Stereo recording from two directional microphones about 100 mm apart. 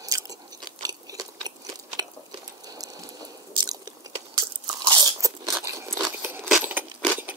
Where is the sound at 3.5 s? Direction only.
40° right (ahead or behind).